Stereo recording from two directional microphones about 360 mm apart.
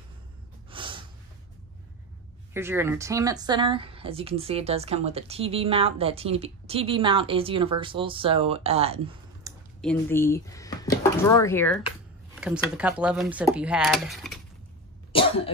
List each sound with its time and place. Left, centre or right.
0.7 s snort: centre
2.5 s speech: centre
9.8 s speech: centre
15.1 s cough: centre